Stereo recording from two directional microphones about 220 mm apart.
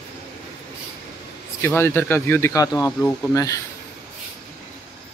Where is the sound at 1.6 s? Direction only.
10° left (ahead or behind).